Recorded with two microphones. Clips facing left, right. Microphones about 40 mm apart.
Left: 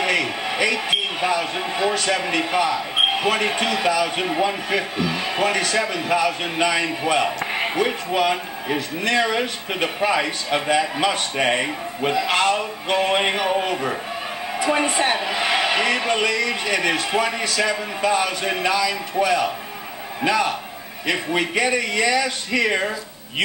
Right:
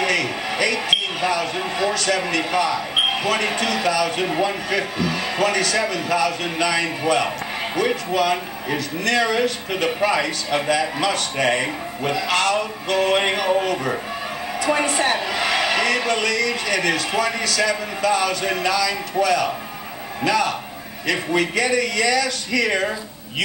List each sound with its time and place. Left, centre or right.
0.0 s a sound: centre
1.8 s a woman's voice: centre
14.6 s a woman's voice: centre